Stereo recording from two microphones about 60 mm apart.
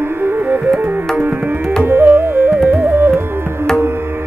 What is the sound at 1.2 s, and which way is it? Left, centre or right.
Tabla, right.